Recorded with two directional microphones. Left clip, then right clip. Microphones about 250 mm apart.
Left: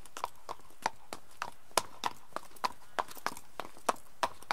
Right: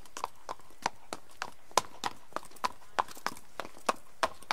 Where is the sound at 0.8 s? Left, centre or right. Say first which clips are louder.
Right 1 dB; centre.